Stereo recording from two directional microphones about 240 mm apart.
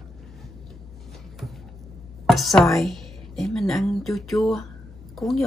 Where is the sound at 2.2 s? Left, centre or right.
Centre.